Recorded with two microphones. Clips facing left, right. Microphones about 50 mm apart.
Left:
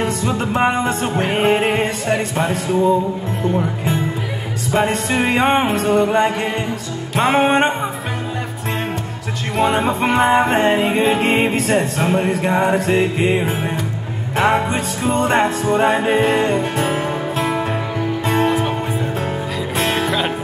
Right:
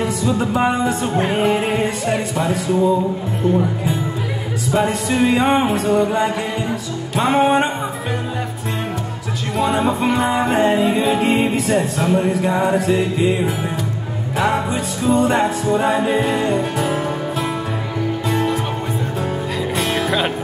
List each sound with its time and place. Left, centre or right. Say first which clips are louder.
0.0 s music: right 1 dB; left
4.7 s music: even; left
9.6 s music: left 1 dB; left
18.2 s music: left 4 dB; left
20.1 s music: even; centre